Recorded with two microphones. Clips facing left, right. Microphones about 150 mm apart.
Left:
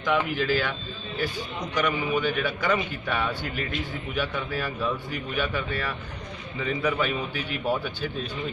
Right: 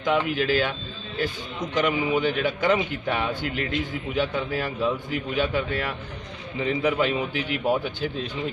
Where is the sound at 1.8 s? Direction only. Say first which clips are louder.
Right 3 dB; 20° right (ahead or behind).